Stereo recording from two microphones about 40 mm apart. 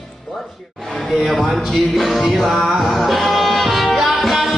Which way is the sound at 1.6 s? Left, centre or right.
Centre.